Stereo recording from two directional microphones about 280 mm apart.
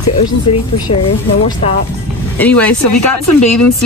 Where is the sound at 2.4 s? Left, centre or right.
Centre.